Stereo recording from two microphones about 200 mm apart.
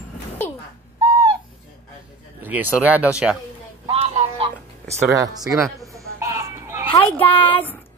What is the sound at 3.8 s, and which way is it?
Music, 30° right (ahead or behind).